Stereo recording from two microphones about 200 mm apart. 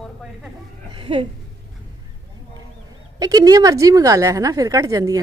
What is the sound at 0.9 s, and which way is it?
Speech, 25° right (ahead or behind).